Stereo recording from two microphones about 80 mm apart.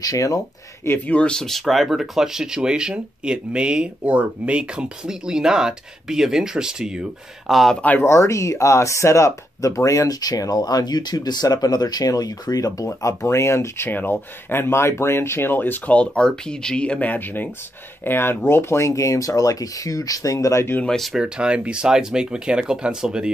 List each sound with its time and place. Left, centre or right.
0.0 s speech: left
0.8 s speech: left
1.1 s speech: centre
8.0 s speech: left
20.8 s speech: centre
21.1 s speech: centre